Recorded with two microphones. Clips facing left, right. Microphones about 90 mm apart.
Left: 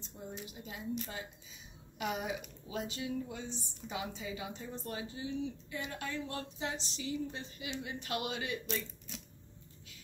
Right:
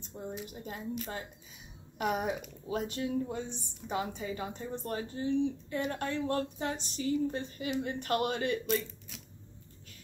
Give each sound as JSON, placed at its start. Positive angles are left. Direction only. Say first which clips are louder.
{"t": 0.2, "sound": "a woman's voice", "louder": "right 5 dB", "side_deg": -50}
{"t": 2.0, "sound": "a woman's voice", "louder": "right 5 dB", "side_deg": -50}